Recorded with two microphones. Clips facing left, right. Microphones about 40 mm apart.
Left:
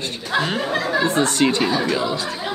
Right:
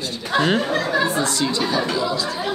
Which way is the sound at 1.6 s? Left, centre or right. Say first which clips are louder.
Left 1 dB; centre.